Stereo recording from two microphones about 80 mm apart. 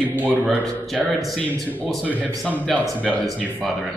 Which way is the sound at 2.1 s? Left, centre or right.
Left.